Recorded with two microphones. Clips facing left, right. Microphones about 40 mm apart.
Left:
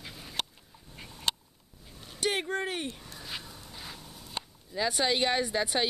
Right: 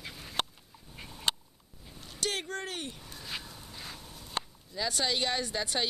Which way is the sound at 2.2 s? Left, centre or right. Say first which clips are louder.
Left 5 dB; centre.